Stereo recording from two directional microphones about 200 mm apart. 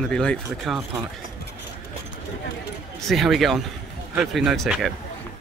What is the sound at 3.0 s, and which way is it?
Speech, centre (ahead or behind).